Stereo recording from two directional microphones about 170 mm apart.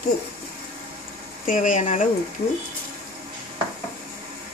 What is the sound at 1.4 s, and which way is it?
Speech, 50° left (ahead or behind).